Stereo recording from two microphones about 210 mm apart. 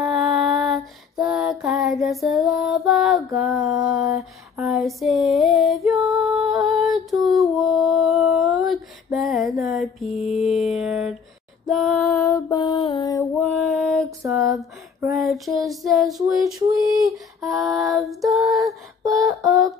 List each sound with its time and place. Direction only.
0.0 s music: centre (ahead or behind)
3.3 s a sound: centre (ahead or behind)
7.1 s music: centre (ahead or behind)
10.3 s child singing: centre (ahead or behind)
11.6 s female singing: centre (ahead or behind)
12.3 s music: 15° left (ahead or behind)
12.9 s female singing: 15° left (ahead or behind)
13.4 s a sound: centre (ahead or behind)
15.1 s child singing: centre (ahead or behind)
17.5 s child singing: centre (ahead or behind)